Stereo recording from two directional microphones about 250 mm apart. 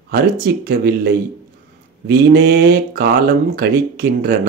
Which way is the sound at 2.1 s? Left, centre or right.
Right.